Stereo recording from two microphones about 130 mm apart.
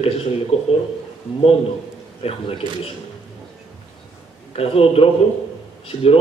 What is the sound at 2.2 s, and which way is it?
Speech, 50° left (ahead or behind).